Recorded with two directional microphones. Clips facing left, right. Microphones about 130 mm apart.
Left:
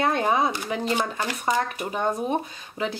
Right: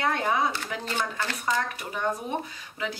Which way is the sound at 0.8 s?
15° left (ahead or behind).